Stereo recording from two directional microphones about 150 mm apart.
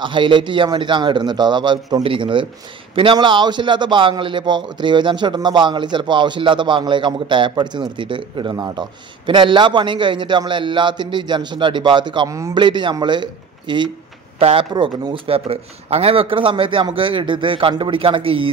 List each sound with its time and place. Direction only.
0.0 s a man's voice: 30° right (ahead or behind)